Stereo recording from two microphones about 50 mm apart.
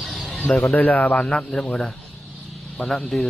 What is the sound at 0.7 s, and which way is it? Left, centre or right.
Speech, left.